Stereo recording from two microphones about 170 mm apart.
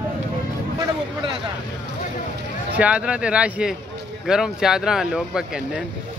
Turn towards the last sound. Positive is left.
turn(degrees=-5)  # may be behind; listen again after turning